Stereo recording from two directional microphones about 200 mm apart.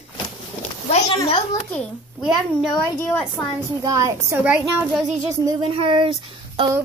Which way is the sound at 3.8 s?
15° right (ahead or behind).